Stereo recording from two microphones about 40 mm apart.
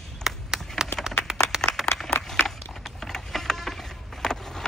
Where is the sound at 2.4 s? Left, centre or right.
Centre.